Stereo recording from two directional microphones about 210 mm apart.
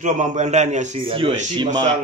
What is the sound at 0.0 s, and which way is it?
A man's voice, 35° right (ahead or behind).